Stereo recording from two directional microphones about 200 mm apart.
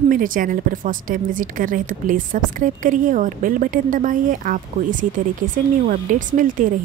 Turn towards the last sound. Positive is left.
turn(degrees=-40)  # may be behind; listen again after turning